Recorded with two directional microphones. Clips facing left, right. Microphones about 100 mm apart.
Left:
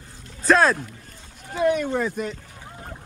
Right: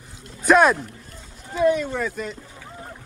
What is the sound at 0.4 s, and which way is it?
Speech, 15° right (ahead or behind).